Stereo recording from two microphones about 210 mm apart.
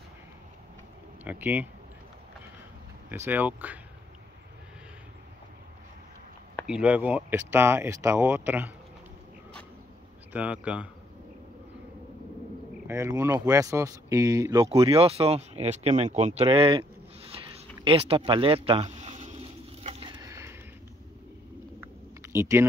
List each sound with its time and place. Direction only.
1.2 s speech: 10° right (ahead or behind)
3.1 s speech: 10° right (ahead or behind)
6.6 s speech: 5° right (ahead or behind)
10.3 s speech: 5° right (ahead or behind)
12.8 s speech: 15° right (ahead or behind)
14.7 s speech: 25° right (ahead or behind)
17.8 s a sound: 25° right (ahead or behind)
22.3 s speech: 10° right (ahead or behind)